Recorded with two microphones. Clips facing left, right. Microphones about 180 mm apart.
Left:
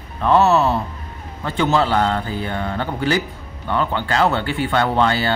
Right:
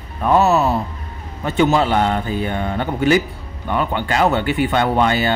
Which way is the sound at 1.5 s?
15° right (ahead or behind).